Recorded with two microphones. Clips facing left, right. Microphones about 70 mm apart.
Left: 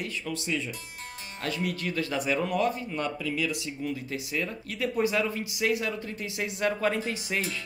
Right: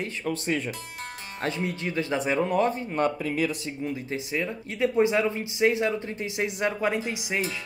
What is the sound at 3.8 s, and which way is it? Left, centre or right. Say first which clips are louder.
Speech: right 2 dB; right.